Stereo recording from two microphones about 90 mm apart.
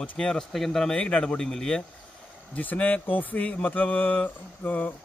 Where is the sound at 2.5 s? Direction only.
20° left (ahead or behind).